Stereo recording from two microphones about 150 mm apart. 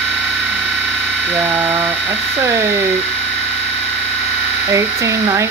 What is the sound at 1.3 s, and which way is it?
Speech, 10° right (ahead or behind).